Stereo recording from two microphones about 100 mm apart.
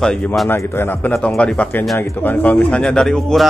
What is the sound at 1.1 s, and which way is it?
Speech, 10° left (ahead or behind).